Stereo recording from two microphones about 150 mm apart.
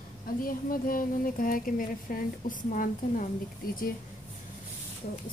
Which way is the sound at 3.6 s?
75° left (ahead or behind).